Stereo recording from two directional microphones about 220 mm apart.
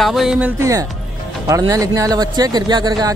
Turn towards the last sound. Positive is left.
turn(degrees=-20)  # may be behind; listen again after turning